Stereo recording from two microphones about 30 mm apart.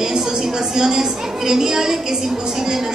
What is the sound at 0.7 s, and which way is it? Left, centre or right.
A woman's voice, right.